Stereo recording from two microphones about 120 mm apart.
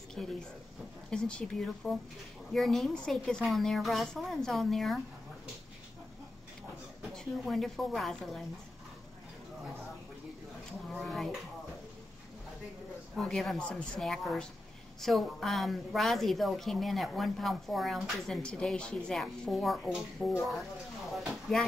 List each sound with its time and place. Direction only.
0.2 s a woman's voice: centre (ahead or behind)
7.4 s a woman's voice: centre (ahead or behind)
10.9 s a woman's voice: centre (ahead or behind)
13.1 s a woman's voice: centre (ahead or behind)
21.1 s a sound: centre (ahead or behind)